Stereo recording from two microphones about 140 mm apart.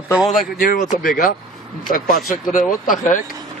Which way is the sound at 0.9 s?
70° left (ahead or behind).